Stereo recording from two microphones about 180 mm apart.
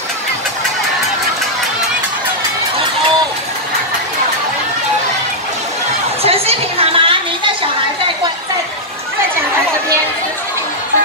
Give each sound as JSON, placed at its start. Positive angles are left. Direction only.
{"t": 6.2, "sound": "chatter", "side_deg": -35}